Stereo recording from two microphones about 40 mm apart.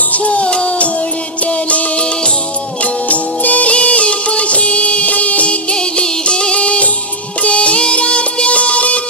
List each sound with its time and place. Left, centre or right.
0.1 s music: left
0.5 s music: centre
1.4 s music: left
2.0 s music: left
2.8 s music: left
3.7 s music of bollywood: left
5.8 s music: left